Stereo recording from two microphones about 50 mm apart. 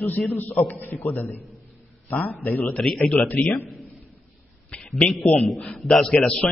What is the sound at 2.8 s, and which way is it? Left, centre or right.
Speech, centre.